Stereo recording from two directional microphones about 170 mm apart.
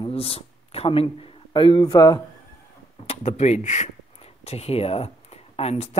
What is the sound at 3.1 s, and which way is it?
A woman's voice, 40° left (ahead or behind).